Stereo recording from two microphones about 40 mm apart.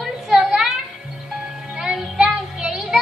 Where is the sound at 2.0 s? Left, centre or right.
Centre.